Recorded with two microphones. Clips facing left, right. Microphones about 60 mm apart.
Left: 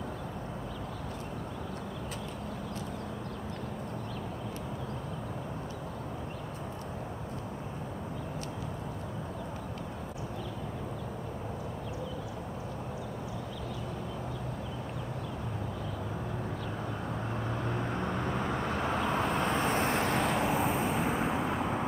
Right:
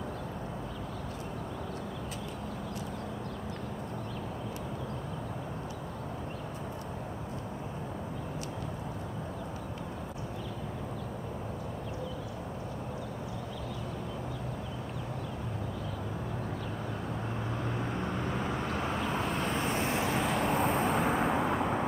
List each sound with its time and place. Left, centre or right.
17.7 s vehicle: centre
19.6 s vehicle: left
20.0 s vehicle: centre